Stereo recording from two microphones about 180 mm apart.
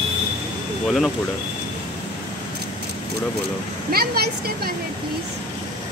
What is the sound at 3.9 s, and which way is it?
Speech, 60° right (ahead or behind).